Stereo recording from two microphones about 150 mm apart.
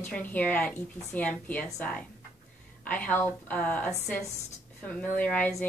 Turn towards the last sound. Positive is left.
turn(degrees=10)  # may be behind; listen again after turning